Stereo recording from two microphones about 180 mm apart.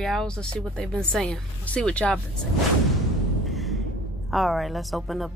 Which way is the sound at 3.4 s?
Centre (ahead or behind).